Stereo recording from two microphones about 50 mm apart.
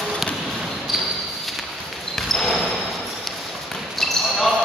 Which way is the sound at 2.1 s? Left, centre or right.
Centre.